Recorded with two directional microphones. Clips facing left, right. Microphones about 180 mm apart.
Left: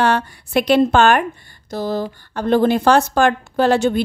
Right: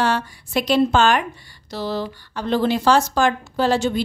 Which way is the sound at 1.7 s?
50° left (ahead or behind).